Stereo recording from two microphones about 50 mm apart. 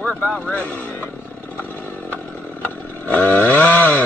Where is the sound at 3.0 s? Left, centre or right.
Left.